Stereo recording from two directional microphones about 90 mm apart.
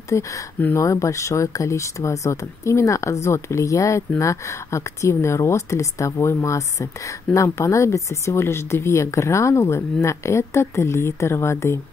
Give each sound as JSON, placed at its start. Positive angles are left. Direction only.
{"t": 0.1, "sound": "speech", "side_deg": 35}
{"t": 0.6, "sound": "speech", "side_deg": 20}
{"t": 0.8, "sound": "speech", "side_deg": 35}